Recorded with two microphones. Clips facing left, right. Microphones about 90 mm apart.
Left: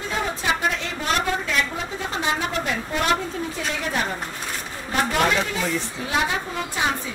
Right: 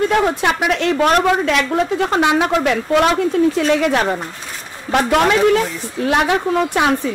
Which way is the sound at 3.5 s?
80° right.